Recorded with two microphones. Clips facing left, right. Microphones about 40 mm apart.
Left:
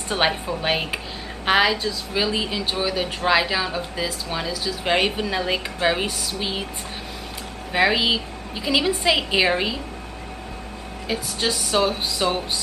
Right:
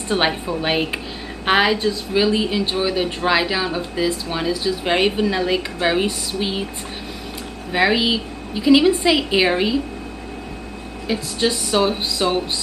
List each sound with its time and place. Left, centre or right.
0.1 s speech: centre
7.7 s a woman's voice: centre
11.1 s speech: centre
11.7 s a sound: centre
12.2 s speech: centre